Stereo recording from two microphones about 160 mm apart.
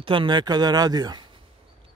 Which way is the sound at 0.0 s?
30° right (ahead or behind).